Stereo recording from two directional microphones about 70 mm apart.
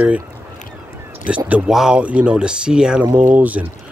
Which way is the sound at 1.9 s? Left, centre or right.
Centre.